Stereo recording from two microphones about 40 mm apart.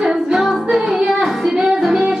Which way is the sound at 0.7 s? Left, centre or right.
Right.